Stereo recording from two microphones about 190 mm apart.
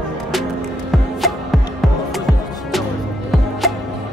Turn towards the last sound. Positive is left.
turn(degrees=0)  # may be behind; listen again after turning